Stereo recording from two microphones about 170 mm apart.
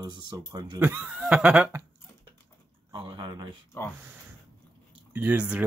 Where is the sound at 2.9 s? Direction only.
25° right (ahead or behind).